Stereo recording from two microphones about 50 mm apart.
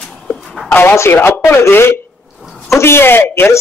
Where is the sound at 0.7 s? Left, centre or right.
Left.